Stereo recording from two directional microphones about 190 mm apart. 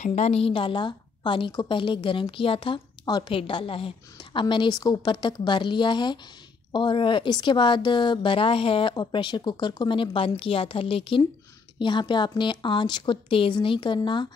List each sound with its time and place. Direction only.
0.0 s a woman's voice: 35° left (ahead or behind)